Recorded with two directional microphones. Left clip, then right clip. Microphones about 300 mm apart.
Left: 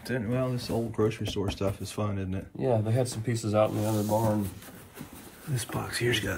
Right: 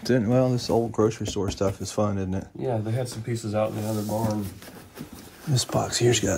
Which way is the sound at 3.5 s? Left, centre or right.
Left.